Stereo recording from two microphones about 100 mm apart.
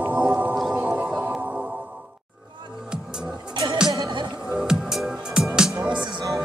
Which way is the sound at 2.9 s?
5° right (ahead or behind).